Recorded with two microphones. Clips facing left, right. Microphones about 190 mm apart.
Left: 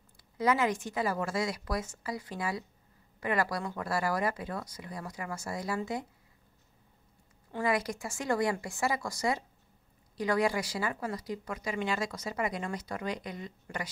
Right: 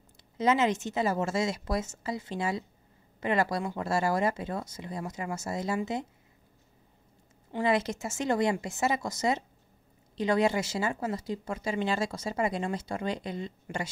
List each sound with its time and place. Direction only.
0.4 s speech: 20° right (ahead or behind)
7.5 s speech: 25° right (ahead or behind)